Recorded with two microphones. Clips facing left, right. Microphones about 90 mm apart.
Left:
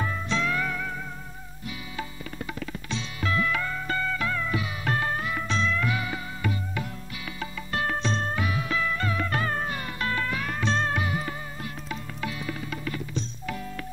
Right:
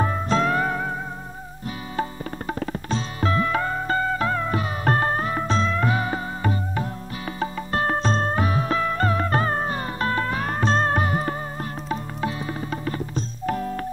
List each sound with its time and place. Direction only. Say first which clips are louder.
0.0 s music: right 7 dB; 45° right (ahead or behind)
2.0 s music: right 10 dB; 40° right (ahead or behind)
11.9 s tabla: right 7 dB; 35° right (ahead or behind)